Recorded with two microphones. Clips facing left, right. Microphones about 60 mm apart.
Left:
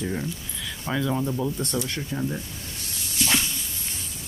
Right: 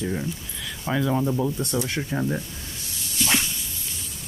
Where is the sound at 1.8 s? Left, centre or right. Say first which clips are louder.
Right 2 dB; right.